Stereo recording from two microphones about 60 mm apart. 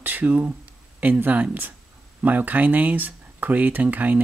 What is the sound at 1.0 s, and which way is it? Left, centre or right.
Speech, right.